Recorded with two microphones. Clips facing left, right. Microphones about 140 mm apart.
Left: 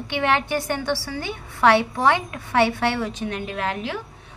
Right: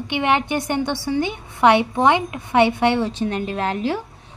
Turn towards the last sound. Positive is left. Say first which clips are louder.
# right 5 dB
turn(degrees=-35)  # may be behind; listen again after turning